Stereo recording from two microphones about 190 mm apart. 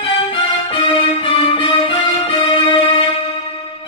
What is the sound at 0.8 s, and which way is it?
Music, 25° left (ahead or behind).